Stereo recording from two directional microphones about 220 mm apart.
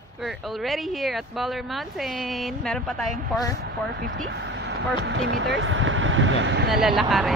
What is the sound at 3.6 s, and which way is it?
Speech, 45° right (ahead or behind).